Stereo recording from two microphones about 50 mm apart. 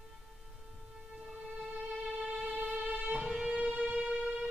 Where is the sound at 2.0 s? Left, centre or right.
Centre.